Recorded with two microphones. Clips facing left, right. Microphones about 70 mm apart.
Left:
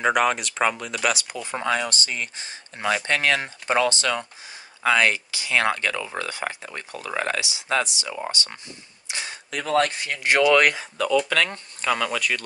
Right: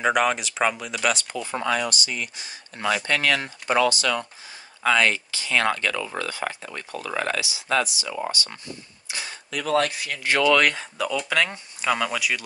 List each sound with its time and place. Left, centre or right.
0.0 s speech: centre
1.3 s speech: centre
1.6 s speech: left
4.8 s speech: centre
9.0 s a sound: centre
9.5 s speech: left
10.2 s speech: centre
11.0 s speech: centre